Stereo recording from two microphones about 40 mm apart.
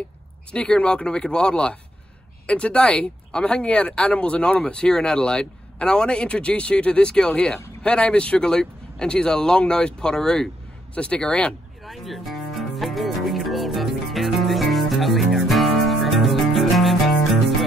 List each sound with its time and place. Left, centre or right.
0.5 s a man's voice: left
11.8 s music: centre